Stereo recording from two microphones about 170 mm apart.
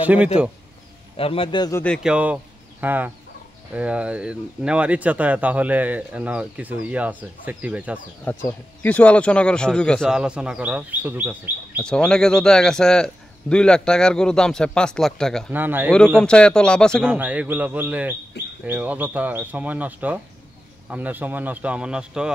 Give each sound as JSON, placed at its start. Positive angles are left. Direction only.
{"t": 0.0, "sound": "speech", "side_deg": -10}
{"t": 1.1, "sound": "a man's voice", "side_deg": 35}
{"t": 1.7, "sound": "speech", "side_deg": 10}
{"t": 2.0, "sound": "speech", "side_deg": -5}
{"t": 8.5, "sound": "a man's voice", "side_deg": 10}
{"t": 11.8, "sound": "a man's voice", "side_deg": 5}
{"t": 15.5, "sound": "speech", "side_deg": -10}
{"t": 16.2, "sound": "a man's voice", "side_deg": 5}
{"t": 17.0, "sound": "speech", "side_deg": -10}